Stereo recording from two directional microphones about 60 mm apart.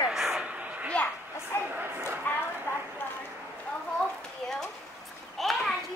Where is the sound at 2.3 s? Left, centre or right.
Left.